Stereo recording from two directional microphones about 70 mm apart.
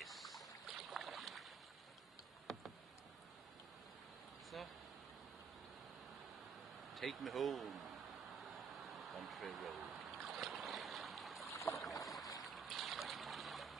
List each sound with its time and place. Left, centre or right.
0.0 s boat: centre
2.5 s a sound: centre
4.5 s vehicle: centre
6.9 s speech: centre
8.7 s boat: centre
11.5 s boat: left
11.8 s boat: centre
12.4 s trickle: centre